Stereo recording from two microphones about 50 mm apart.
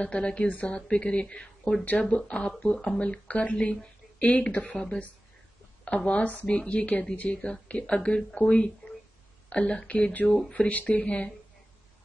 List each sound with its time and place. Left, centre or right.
0.0 s a woman's voice: centre